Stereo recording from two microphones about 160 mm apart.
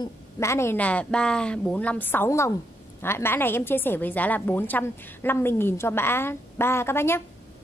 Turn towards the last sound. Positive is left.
turn(degrees=15)  # may be behind; listen again after turning